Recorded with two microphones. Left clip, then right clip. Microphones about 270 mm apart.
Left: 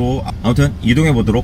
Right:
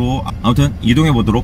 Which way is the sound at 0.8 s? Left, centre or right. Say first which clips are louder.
Right 1 dB; centre.